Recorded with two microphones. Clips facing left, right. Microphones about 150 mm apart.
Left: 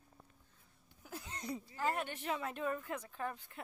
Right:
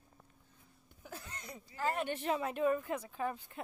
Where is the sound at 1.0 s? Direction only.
10° left (ahead or behind).